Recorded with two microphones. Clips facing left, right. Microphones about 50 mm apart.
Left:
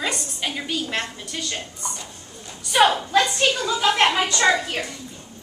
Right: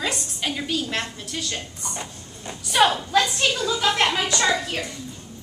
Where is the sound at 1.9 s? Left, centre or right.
Right.